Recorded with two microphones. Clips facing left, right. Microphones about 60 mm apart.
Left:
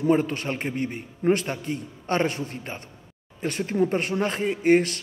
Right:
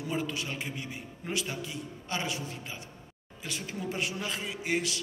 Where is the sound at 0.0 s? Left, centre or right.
Left.